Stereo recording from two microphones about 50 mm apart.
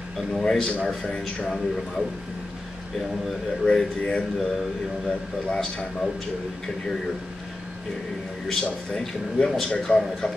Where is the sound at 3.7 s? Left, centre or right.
Centre.